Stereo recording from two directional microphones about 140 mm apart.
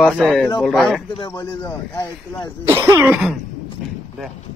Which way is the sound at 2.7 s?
20° right (ahead or behind).